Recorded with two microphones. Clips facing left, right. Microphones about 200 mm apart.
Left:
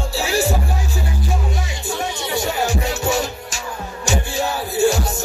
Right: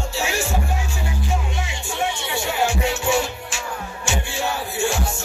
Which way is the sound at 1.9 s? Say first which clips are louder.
Even; 40° left (ahead or behind).